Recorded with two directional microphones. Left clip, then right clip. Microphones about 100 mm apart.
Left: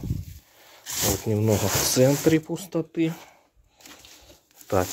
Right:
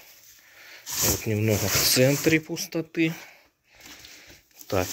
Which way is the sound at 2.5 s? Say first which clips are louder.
Left 1 dB; 60° left (ahead or behind).